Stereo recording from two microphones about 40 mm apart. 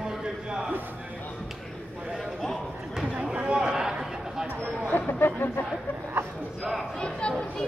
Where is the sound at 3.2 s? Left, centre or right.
Right.